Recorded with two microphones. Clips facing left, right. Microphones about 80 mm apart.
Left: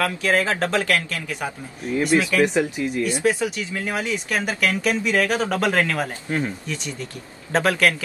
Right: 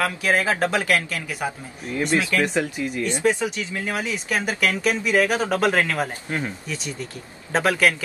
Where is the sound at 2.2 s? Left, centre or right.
Centre.